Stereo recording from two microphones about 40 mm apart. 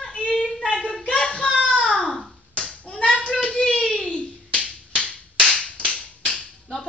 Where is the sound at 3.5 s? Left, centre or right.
Centre.